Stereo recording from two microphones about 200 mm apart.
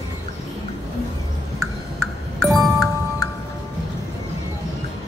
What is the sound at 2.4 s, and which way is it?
Music, centre (ahead or behind).